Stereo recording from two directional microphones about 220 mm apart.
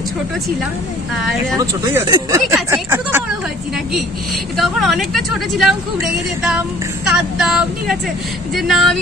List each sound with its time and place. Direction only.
1.1 s speech: centre (ahead or behind)
2.0 s speech: 15° right (ahead or behind)
4.6 s speech: centre (ahead or behind)
7.1 s speech: 5° right (ahead or behind)